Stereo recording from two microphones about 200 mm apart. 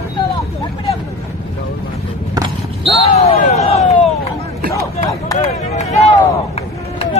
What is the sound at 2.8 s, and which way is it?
Basketball bounce, 30° left (ahead or behind).